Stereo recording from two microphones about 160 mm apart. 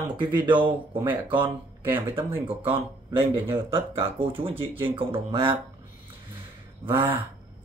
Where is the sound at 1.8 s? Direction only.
15° right (ahead or behind).